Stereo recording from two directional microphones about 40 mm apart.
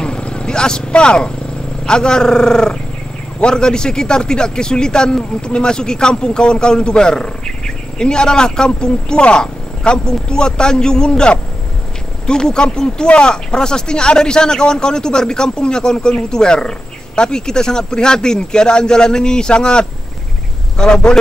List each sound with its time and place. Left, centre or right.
0.0 s vehicle: left
1.9 s a man's voice: centre